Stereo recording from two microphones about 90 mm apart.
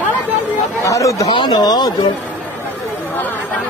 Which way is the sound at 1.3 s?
60° left (ahead or behind).